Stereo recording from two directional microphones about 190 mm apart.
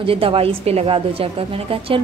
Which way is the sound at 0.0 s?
30° right (ahead or behind).